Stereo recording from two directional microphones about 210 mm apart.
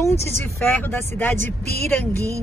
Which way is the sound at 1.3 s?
30° right (ahead or behind).